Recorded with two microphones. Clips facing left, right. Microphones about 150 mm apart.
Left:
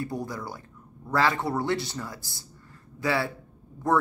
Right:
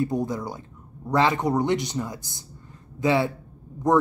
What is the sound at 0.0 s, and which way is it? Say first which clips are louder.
A man's voice: right 7 dB; 20° right (ahead or behind).